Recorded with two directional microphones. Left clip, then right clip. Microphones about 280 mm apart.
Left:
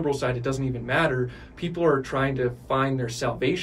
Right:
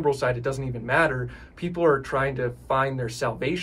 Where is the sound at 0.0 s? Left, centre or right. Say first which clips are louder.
Right 2 dB; centre.